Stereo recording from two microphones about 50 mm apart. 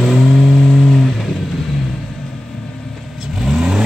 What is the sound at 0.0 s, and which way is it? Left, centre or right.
Vehicle, centre.